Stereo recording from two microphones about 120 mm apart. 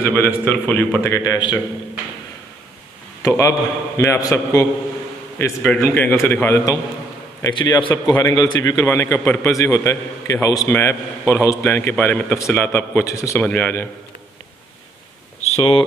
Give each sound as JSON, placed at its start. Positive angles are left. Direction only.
{"t": 0.0, "sound": "a man's voice", "side_deg": 20}
{"t": 3.2, "sound": "a man's voice", "side_deg": 25}
{"t": 5.4, "sound": "a man's voice", "side_deg": 15}
{"t": 13.4, "sound": "a man's voice", "side_deg": 15}
{"t": 15.5, "sound": "speech", "side_deg": 50}